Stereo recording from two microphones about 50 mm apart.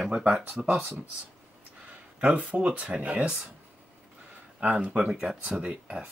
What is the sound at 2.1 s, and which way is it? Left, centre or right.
Speech, right.